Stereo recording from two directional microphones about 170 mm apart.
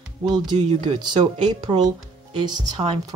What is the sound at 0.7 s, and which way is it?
Speech, 25° right (ahead or behind).